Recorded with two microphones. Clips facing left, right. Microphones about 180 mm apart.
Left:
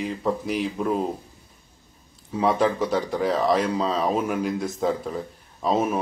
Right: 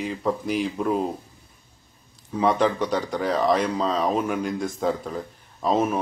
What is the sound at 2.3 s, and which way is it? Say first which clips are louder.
Speech: even; 5° left (ahead or behind).